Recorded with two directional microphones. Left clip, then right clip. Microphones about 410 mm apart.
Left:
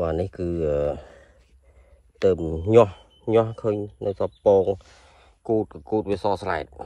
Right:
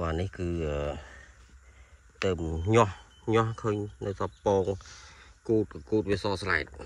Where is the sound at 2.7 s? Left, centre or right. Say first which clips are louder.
Left 8 dB; centre.